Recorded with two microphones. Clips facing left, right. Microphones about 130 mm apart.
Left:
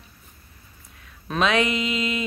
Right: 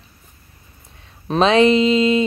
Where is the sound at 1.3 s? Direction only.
30° right (ahead or behind).